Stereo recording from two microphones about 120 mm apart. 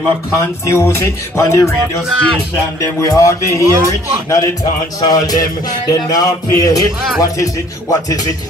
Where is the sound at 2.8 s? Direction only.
25° left (ahead or behind).